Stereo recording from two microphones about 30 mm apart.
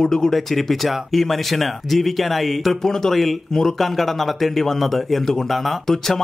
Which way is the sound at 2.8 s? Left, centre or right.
Centre.